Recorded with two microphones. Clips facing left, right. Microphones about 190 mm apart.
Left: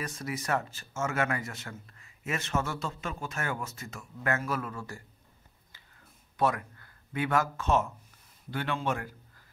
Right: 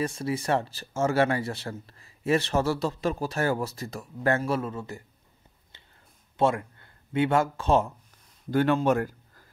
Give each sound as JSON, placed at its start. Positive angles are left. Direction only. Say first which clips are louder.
{"t": 0.0, "sound": "speech", "louder": "right 7 dB", "side_deg": -30}
{"t": 6.3, "sound": "speech", "louder": "right 4 dB", "side_deg": -25}
{"t": 8.5, "sound": "speech", "louder": "right 10 dB", "side_deg": -45}